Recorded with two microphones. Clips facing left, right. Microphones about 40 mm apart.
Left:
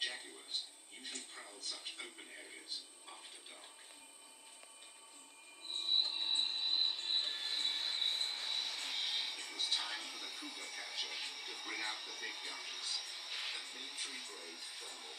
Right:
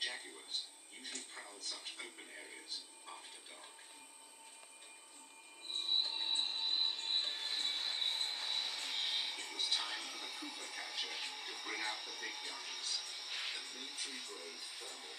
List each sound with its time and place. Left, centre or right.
0.0 s television: centre
1.8 s speech: centre
6.0 s music: centre
7.6 s train: centre
9.7 s television: centre
10.6 s speech: centre
13.3 s music: centre
13.7 s speech: centre